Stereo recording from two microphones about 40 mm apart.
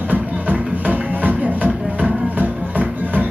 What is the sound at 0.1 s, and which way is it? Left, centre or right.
Music, right.